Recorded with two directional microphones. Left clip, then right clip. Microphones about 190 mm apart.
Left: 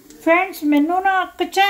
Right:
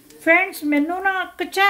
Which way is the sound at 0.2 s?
10° right (ahead or behind).